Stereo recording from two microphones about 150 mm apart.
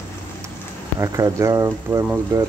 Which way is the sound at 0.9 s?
20° right (ahead or behind).